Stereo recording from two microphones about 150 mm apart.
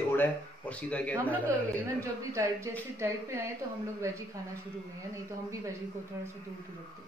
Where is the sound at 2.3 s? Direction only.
20° right (ahead or behind).